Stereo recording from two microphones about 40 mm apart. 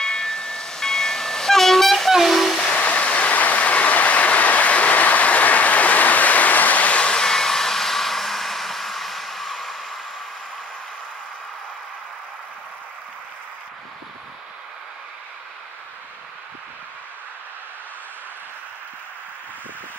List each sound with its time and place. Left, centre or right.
0.0 s train: centre
2.8 s train: left
7.1 s hair dryer: centre